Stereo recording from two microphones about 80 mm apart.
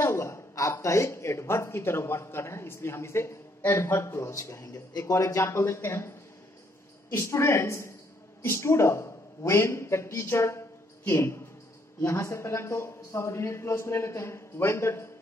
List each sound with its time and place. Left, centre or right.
0.0 s a woman's voice: left